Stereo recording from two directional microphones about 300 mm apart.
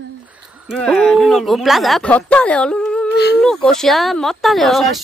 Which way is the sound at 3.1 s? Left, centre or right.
Left.